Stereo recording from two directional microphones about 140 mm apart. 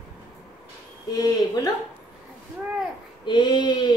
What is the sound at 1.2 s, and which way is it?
Speech, 25° left (ahead or behind).